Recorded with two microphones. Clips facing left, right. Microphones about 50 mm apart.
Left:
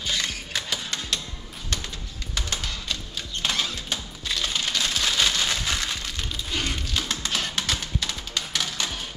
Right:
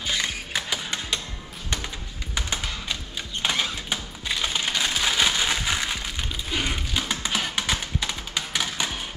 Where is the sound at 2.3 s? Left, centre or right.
Centre.